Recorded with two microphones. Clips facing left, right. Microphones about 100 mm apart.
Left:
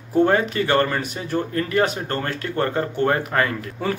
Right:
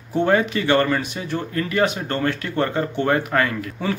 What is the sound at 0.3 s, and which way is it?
Speech, 35° left (ahead or behind).